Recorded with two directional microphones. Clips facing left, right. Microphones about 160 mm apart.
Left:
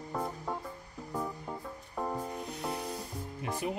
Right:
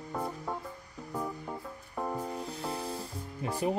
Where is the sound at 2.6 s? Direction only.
30° right (ahead or behind).